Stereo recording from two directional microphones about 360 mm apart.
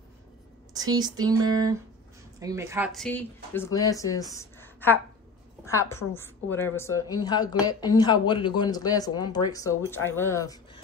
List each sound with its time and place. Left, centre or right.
0.7 s a woman's voice: centre